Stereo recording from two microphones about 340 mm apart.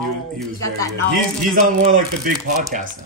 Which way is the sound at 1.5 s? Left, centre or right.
Right.